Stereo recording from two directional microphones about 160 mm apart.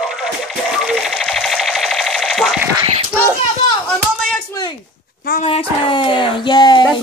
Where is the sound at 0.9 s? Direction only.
Centre (ahead or behind).